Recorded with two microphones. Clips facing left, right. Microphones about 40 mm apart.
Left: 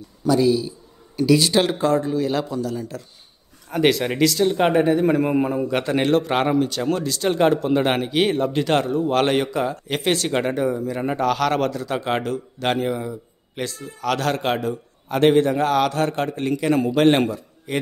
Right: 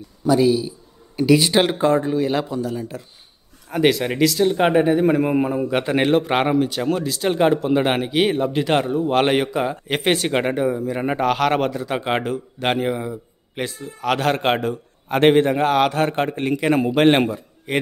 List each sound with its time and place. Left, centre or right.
0.2 s a man's voice: centre
3.6 s a man's voice: centre; by 14.3 s right
14.3 s a man's voice: right